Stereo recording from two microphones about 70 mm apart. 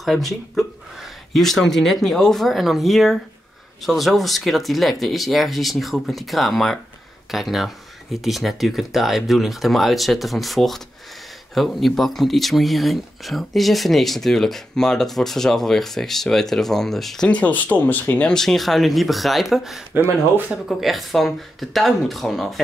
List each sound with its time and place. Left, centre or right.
0.0 s speech: centre
17.3 s speech: left
18.3 s speech: centre
19.9 s speech: right
20.6 s speech: centre